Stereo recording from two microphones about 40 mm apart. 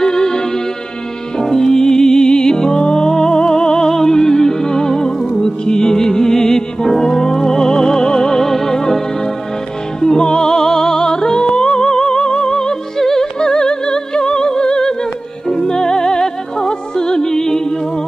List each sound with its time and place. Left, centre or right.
0.0 s music: centre
1.4 s music: centre